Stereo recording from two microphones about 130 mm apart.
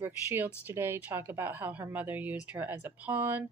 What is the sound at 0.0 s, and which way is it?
A woman's voice, 15° right (ahead or behind).